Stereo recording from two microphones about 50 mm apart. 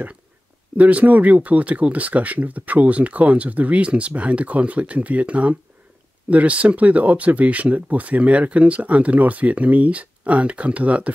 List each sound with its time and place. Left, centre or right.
0.7 s speech: right